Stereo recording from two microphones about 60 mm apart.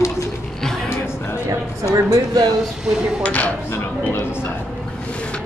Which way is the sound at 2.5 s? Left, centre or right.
Centre.